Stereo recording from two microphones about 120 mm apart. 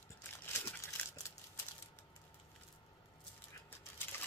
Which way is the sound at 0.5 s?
25° left (ahead or behind).